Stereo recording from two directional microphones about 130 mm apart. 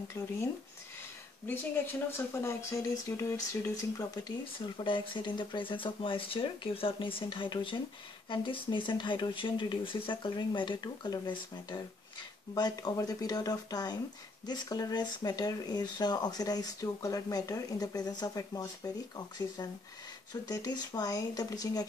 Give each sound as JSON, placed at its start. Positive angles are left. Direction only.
{"t": 1.5, "sound": "speech", "side_deg": 15}
{"t": 4.7, "sound": "speech", "side_deg": 35}